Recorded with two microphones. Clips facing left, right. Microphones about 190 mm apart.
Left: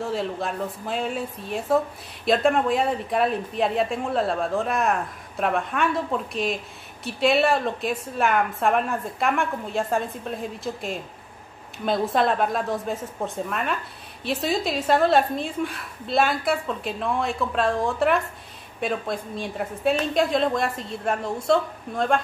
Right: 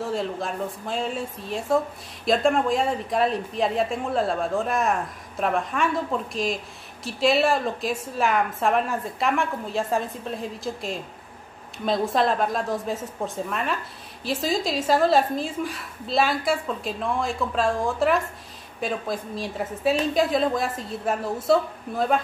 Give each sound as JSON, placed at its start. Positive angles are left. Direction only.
{"t": 0.0, "sound": "speech", "side_deg": 0}